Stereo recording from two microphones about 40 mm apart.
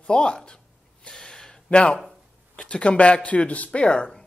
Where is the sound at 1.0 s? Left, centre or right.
Centre.